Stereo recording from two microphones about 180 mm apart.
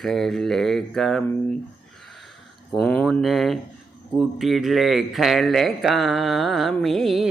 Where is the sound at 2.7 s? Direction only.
5° left (ahead or behind).